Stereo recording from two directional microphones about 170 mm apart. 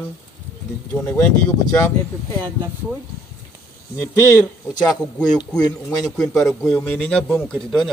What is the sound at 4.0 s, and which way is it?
A man's voice, 15° left (ahead or behind).